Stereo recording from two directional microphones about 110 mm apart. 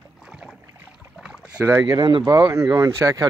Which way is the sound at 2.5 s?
30° right (ahead or behind).